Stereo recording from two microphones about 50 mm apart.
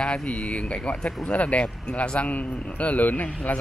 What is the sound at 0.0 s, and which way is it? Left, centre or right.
Speech, left.